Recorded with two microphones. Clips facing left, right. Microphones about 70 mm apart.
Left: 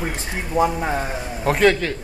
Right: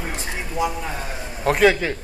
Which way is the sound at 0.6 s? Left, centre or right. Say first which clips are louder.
Left 6 dB; left.